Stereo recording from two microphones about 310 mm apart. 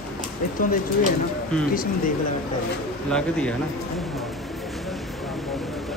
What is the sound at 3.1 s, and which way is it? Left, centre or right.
Speech, centre.